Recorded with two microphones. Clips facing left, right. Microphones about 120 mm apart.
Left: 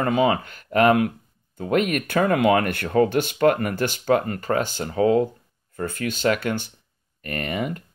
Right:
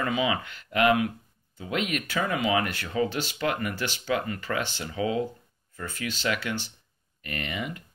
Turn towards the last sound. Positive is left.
turn(degrees=45)  # may be behind; listen again after turning